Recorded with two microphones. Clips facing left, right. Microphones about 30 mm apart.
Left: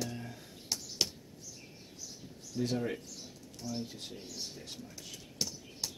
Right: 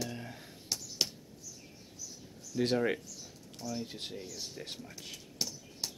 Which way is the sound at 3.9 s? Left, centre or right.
Right.